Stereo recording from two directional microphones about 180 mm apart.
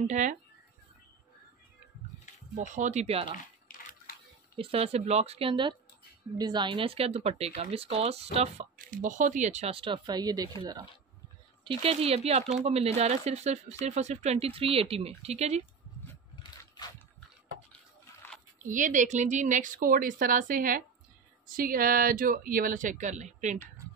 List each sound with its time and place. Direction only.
0.0 s speech: 40° right (ahead or behind)
2.5 s speech: 45° right (ahead or behind)
3.3 s a sound: 55° left (ahead or behind)
4.6 s speech: 30° right (ahead or behind)
8.7 s speech: 50° right (ahead or behind)
18.7 s a woman's voice: 45° right (ahead or behind)